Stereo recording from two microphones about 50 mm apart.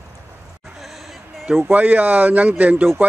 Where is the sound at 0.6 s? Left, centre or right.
Centre.